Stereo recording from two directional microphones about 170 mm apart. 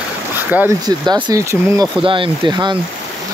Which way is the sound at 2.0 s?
30° right (ahead or behind).